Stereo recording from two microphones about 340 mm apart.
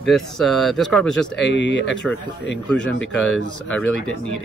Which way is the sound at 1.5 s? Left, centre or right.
Left.